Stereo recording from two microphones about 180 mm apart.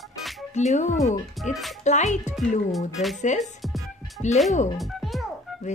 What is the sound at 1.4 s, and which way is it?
Speech, centre (ahead or behind).